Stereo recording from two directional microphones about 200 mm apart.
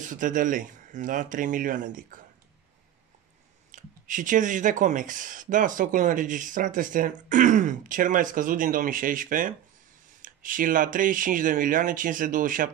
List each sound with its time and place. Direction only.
0.0 s speech: 40° right (ahead or behind)
3.7 s speech: 40° right (ahead or behind)